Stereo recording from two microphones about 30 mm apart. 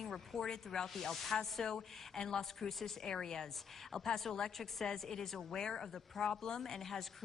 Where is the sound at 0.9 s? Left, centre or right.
Centre.